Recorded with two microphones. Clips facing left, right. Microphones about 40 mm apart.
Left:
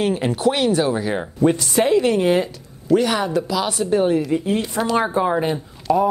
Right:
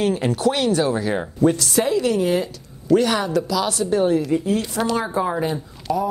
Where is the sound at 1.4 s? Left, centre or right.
Left.